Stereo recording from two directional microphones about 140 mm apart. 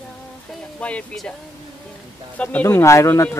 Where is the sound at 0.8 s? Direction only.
5° left (ahead or behind).